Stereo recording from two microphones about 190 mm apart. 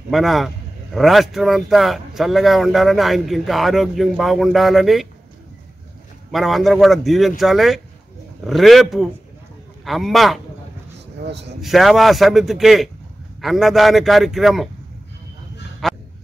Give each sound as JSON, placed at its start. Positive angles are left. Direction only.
{"t": 0.1, "sound": "speech", "side_deg": 0}
{"t": 6.3, "sound": "speech", "side_deg": 0}
{"t": 11.2, "sound": "speech", "side_deg": -65}
{"t": 11.6, "sound": "speech", "side_deg": 0}
{"t": 15.8, "sound": "a sound", "side_deg": 0}